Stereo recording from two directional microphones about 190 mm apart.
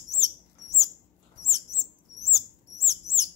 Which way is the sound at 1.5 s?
15° left (ahead or behind).